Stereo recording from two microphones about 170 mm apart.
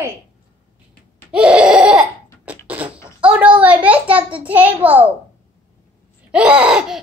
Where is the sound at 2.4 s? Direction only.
10° right (ahead or behind).